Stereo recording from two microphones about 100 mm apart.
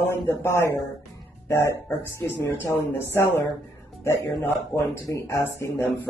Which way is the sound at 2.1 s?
20° left (ahead or behind).